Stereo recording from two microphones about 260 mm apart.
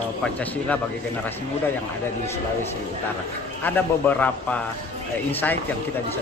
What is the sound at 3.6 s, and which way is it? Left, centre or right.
A man's voice, centre.